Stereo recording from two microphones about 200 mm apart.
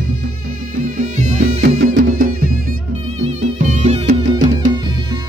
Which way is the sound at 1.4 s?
85° right.